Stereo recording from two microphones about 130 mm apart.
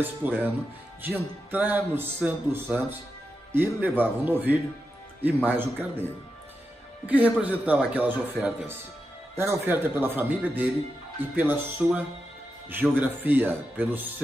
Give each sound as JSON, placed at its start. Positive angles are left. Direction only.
{"t": 0.0, "sound": "speech", "side_deg": -15}